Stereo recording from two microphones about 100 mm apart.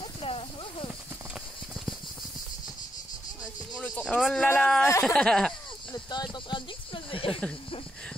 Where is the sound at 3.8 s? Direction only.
10° left (ahead or behind).